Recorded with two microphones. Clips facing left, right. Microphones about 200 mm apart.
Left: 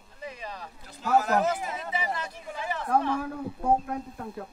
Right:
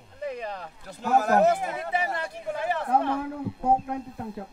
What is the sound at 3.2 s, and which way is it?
Speech, 25° right (ahead or behind).